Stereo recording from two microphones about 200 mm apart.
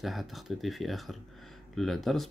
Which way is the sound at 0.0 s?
Centre (ahead or behind).